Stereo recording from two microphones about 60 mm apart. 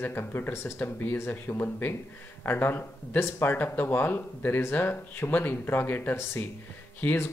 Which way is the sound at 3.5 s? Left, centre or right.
Left.